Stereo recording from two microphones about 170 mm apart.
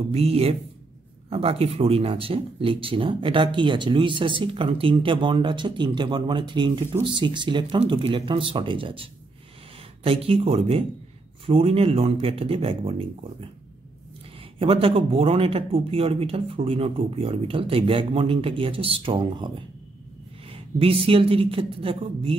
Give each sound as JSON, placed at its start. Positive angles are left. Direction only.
{"t": 0.1, "sound": "speech", "side_deg": -35}
{"t": 14.6, "sound": "speech", "side_deg": -35}